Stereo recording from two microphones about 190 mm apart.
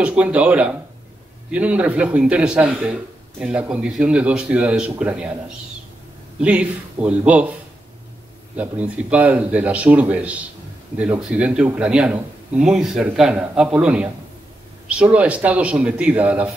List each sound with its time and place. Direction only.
0.0 s a man's voice: 5° right (ahead or behind)
6.4 s speech: 5° right (ahead or behind)
8.5 s a man's voice: 5° right (ahead or behind)